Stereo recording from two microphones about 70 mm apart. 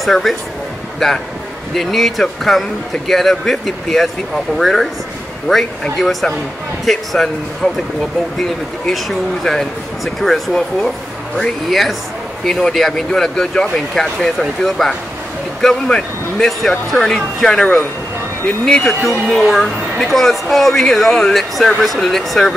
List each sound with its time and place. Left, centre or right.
0.0 s speech: centre